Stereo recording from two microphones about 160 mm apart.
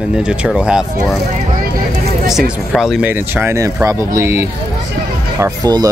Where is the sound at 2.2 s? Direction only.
Centre (ahead or behind); by 5.9 s 25° right (ahead or behind).